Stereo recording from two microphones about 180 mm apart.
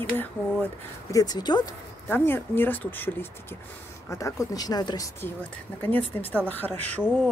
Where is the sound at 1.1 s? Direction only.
20° left (ahead or behind).